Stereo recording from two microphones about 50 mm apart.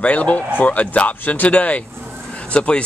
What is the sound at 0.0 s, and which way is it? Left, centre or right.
Speech, left.